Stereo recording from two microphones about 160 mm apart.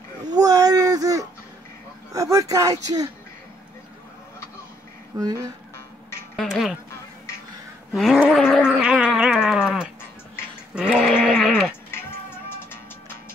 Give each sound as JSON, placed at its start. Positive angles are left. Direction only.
{"t": 0.2, "sound": "a sound", "side_deg": -25}
{"t": 2.1, "sound": "speech", "side_deg": -20}
{"t": 5.1, "sound": "speech", "side_deg": -20}
{"t": 6.3, "sound": "speech", "side_deg": 0}
{"t": 7.9, "sound": "gargling", "side_deg": -5}
{"t": 10.7, "sound": "goat", "side_deg": -5}